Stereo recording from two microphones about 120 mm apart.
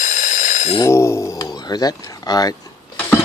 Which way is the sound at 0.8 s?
25° left (ahead or behind).